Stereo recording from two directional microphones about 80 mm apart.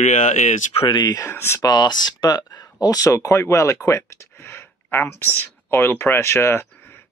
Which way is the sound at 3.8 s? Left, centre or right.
Left.